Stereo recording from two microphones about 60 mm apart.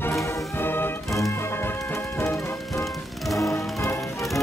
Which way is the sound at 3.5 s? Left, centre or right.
Left.